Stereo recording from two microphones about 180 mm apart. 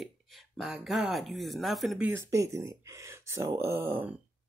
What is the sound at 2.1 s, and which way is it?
Speech, 15° right (ahead or behind).